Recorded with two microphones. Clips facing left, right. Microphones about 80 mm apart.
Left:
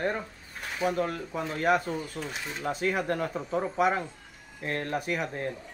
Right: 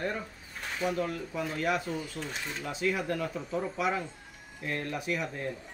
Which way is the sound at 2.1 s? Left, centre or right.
Centre.